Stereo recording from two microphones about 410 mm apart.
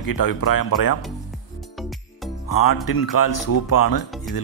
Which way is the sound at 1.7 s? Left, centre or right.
Centre.